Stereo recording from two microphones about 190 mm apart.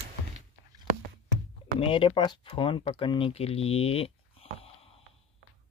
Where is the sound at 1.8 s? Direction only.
25° left (ahead or behind).